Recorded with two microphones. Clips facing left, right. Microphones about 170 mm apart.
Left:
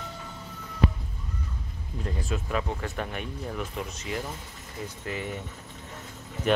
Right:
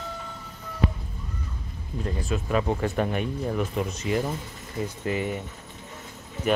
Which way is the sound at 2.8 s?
15° right (ahead or behind).